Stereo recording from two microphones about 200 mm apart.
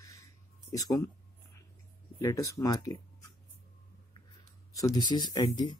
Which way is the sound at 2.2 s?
15° left (ahead or behind).